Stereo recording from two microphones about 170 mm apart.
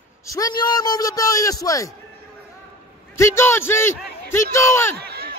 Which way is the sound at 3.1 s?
15° left (ahead or behind).